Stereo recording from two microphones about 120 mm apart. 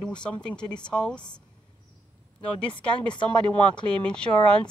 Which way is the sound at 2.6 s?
10° left (ahead or behind).